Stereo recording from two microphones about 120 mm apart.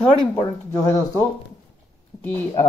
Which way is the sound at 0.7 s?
25° left (ahead or behind).